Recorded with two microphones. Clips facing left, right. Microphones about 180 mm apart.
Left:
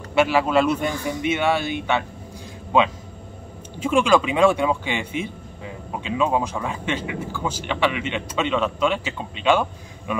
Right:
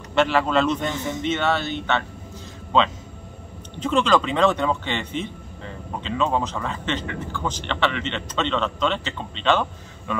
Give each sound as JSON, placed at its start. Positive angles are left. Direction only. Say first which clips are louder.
{"t": 0.1, "sound": "speech", "louder": "left 1 dB", "side_deg": 10}